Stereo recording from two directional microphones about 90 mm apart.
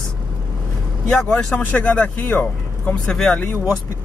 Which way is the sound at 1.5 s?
20° left (ahead or behind).